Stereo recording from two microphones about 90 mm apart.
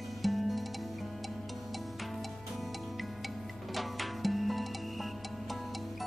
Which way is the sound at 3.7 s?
Centre (ahead or behind).